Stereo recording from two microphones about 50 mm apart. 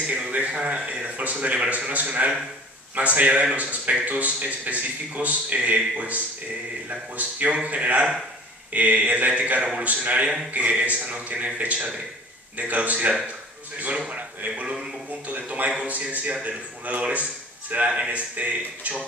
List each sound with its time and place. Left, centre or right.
0.0 s a man's voice: right
5.9 s mantra: right
6.9 s a man's voice: right
8.7 s mantra: right
9.8 s a man's voice: right
12.5 s mantra: right
13.7 s a man's voice: right
15.2 s mantra: right
17.6 s a man's voice: right